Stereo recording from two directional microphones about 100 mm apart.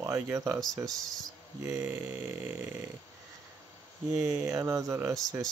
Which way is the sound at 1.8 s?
20° right (ahead or behind).